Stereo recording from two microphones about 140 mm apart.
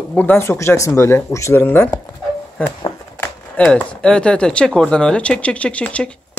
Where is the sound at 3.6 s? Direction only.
5° left (ahead or behind).